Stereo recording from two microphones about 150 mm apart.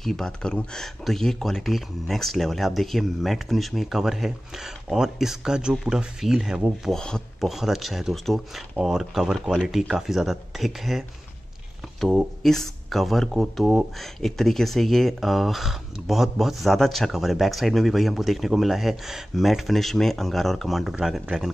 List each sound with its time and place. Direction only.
0.0 s speech: 5° left (ahead or behind)